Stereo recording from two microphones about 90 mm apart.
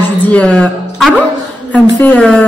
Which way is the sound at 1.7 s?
15° left (ahead or behind).